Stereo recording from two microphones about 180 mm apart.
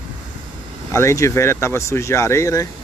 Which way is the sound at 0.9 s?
15° left (ahead or behind).